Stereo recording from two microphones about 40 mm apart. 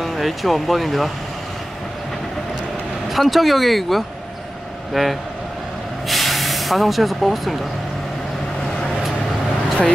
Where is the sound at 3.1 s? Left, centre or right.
Centre.